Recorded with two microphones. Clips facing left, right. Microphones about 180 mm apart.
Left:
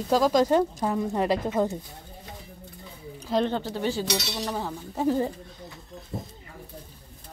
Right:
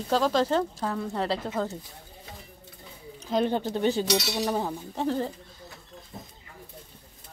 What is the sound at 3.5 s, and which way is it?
A woman's voice, 15° right (ahead or behind).